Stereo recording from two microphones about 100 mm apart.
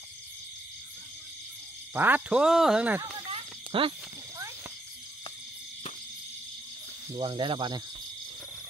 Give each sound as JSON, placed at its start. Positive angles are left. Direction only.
{"t": 2.0, "sound": "speech", "side_deg": -20}
{"t": 3.3, "sound": "a sound", "side_deg": -65}
{"t": 7.2, "sound": "speech", "side_deg": -55}